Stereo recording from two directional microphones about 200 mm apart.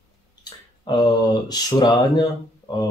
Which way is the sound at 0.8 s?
20° left (ahead or behind).